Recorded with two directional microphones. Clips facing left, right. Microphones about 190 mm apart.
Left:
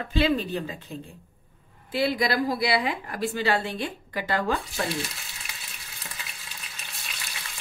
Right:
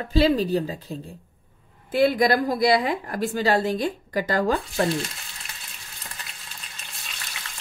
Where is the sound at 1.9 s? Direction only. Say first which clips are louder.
Right 6 dB; 50° right (ahead or behind).